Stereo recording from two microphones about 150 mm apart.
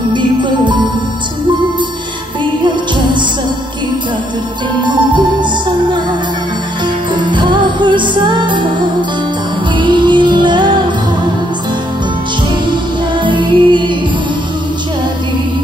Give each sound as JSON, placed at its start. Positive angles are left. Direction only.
{"t": 0.1, "sound": "music", "side_deg": -30}
{"t": 2.6, "sound": "music", "side_deg": -30}
{"t": 4.8, "sound": "music", "side_deg": -30}
{"t": 7.2, "sound": "music", "side_deg": -30}
{"t": 9.8, "sound": "music", "side_deg": -30}
{"t": 13.2, "sound": "music", "side_deg": -30}